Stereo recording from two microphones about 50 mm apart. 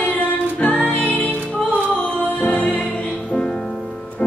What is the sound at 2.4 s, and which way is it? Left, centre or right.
Music, left.